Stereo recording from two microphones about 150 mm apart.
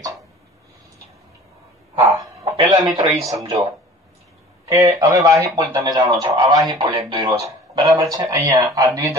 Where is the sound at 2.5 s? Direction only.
30° right (ahead or behind).